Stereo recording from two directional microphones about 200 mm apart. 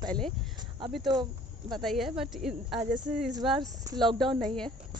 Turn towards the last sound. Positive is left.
turn(degrees=0)  # may be behind; listen again after turning